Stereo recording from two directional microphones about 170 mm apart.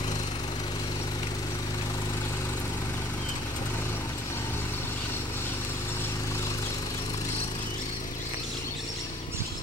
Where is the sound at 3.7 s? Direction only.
15° left (ahead or behind).